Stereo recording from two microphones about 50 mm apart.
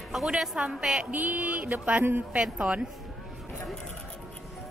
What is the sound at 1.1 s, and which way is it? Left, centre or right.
Speech, right.